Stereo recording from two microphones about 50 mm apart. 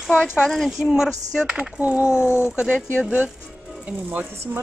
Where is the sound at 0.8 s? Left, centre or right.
Centre.